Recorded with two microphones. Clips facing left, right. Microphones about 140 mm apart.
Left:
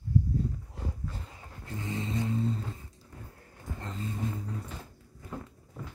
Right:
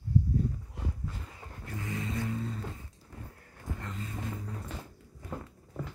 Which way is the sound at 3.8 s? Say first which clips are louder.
Left 5 dB; 30° left (ahead or behind).